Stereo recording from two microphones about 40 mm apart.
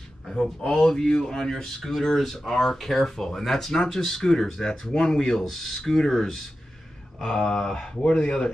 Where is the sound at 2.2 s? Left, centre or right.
Centre.